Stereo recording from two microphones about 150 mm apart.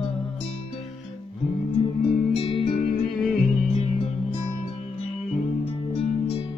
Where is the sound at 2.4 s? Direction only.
35° left (ahead or behind).